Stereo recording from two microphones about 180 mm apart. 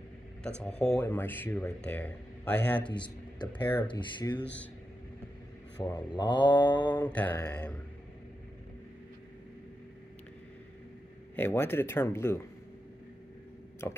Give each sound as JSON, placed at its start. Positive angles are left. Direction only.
{"t": 0.6, "sound": "speech", "side_deg": 5}
{"t": 2.8, "sound": "speech", "side_deg": 25}
{"t": 5.8, "sound": "speech", "side_deg": 10}
{"t": 6.0, "sound": "speech", "side_deg": 25}
{"t": 6.4, "sound": "speech", "side_deg": 10}
{"t": 11.3, "sound": "speech", "side_deg": 10}
{"t": 13.8, "sound": "speech", "side_deg": 15}